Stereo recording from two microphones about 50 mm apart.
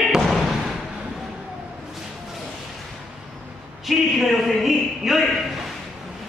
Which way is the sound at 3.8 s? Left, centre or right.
Centre.